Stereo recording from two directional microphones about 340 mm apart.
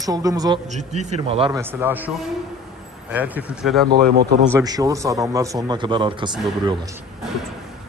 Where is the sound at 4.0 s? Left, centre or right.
Right.